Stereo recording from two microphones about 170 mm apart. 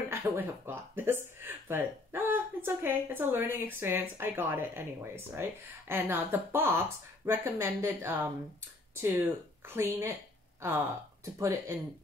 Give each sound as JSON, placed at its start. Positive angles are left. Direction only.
{"t": 0.1, "sound": "speech", "side_deg": -10}
{"t": 9.7, "sound": "speech", "side_deg": -15}